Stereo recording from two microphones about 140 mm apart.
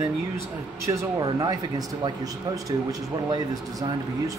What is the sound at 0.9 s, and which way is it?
Speech, 30° right (ahead or behind).